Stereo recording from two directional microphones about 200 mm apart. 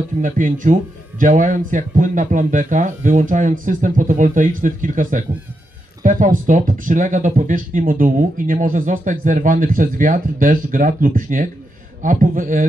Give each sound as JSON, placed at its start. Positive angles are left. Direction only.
{"t": 0.2, "sound": "speech", "side_deg": -40}